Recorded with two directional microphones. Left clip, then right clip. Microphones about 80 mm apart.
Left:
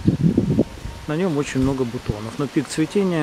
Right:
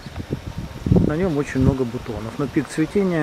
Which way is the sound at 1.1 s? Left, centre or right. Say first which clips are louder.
Even; left.